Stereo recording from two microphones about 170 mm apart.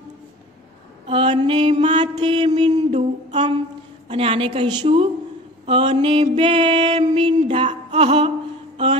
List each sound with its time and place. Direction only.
1.0 s mantra: 30° right (ahead or behind)
2.9 s music: 40° right (ahead or behind)